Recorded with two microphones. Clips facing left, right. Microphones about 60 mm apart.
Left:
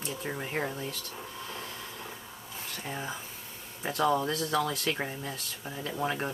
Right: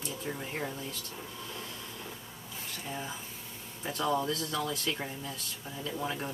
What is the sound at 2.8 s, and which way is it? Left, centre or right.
Speech, centre.